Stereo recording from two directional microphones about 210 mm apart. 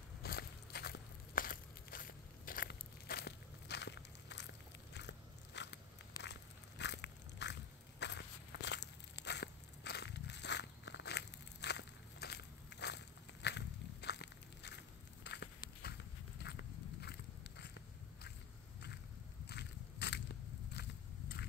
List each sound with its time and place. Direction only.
0.2 s walk: 50° left (ahead or behind)
4.9 s biting: 55° left (ahead or behind)
6.8 s a sound: 55° left (ahead or behind)
8.0 s walk: 55° left (ahead or behind)
19.4 s a sound: 55° left (ahead or behind)
20.8 s walk: 50° left (ahead or behind)